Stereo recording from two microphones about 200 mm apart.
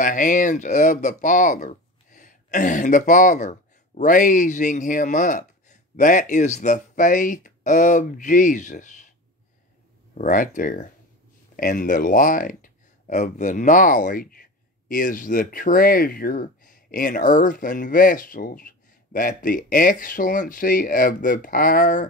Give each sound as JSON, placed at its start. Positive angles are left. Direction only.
{"t": 0.0, "sound": "speech", "side_deg": 40}
{"t": 10.1, "sound": "speech", "side_deg": 40}